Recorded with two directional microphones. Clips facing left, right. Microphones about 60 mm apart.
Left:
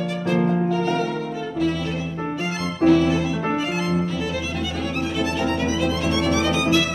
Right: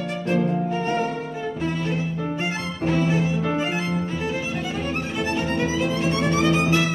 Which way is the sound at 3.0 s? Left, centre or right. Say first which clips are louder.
Left 2 dB; right.